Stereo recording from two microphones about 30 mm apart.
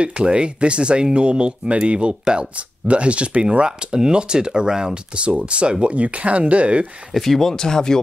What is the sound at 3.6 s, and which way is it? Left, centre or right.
Speech, right.